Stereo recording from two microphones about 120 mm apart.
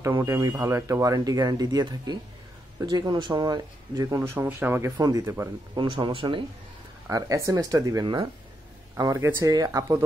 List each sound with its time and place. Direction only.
0.2 s speech: 30° right (ahead or behind)
5.8 s speech: 40° right (ahead or behind)
7.1 s speech: 30° right (ahead or behind)